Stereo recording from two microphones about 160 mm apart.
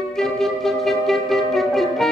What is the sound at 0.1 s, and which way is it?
Music, centre (ahead or behind).